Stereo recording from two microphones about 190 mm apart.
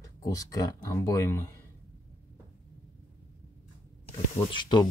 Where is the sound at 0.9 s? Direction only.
15° left (ahead or behind).